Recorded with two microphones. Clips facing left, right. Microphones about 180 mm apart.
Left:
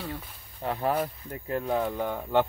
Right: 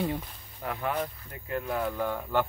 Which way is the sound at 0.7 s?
35° left (ahead or behind).